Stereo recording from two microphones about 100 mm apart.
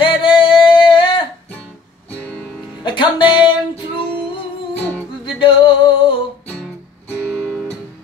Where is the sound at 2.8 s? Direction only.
55° left (ahead or behind).